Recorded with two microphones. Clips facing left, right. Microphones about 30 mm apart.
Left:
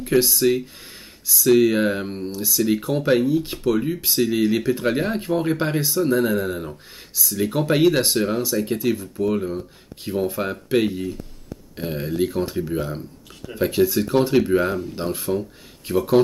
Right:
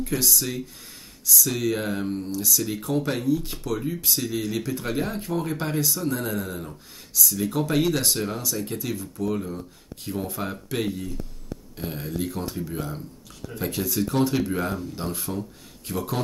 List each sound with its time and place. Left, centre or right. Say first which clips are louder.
0.0 s speech: left 8 dB; left